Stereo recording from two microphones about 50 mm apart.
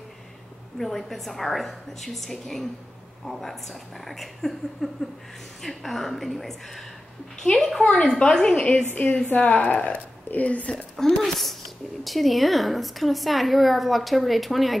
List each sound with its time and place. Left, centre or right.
0.7 s a woman's voice: centre
4.8 s a sound: centre
5.6 s a woman's voice: centre
7.8 s a woman's voice: centre
8.8 s a woman's voice: left
11.0 s a woman's voice: centre